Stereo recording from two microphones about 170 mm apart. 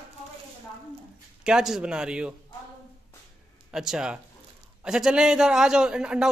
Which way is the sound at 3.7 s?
5° right (ahead or behind).